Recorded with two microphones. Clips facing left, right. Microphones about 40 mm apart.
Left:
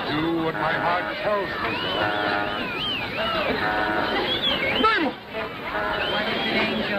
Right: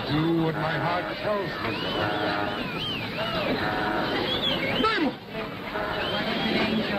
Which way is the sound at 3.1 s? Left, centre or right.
Left.